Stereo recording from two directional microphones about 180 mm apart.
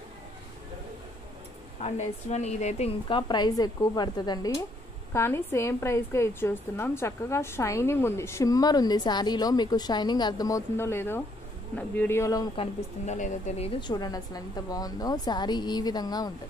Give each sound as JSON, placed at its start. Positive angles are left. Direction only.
{"t": 1.8, "sound": "a woman's voice", "side_deg": 40}
{"t": 12.5, "sound": "a woman's voice", "side_deg": 40}